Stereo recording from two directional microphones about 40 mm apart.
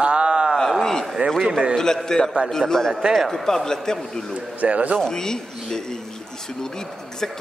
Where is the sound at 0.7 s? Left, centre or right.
Centre.